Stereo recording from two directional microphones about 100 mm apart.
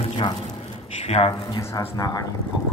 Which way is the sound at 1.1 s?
85° left.